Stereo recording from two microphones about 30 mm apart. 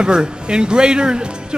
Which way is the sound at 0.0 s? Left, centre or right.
Right.